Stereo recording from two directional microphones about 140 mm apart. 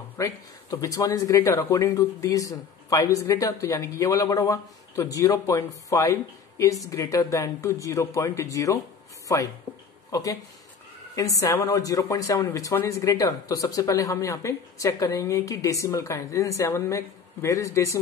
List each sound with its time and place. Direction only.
0.2 s speech: 25° left (ahead or behind)